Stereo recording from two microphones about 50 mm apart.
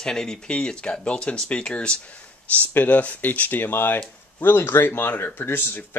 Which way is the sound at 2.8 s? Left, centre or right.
Left.